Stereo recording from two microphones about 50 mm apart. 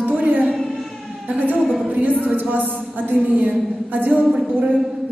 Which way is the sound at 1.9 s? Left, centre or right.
Right.